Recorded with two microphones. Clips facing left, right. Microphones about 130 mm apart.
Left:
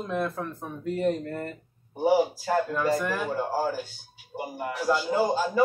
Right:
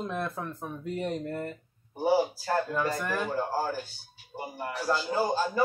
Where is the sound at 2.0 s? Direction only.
15° left (ahead or behind).